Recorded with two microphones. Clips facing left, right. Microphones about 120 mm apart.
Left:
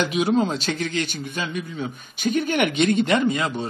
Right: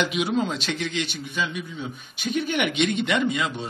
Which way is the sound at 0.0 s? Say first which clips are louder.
Left 3 dB; 40° left (ahead or behind).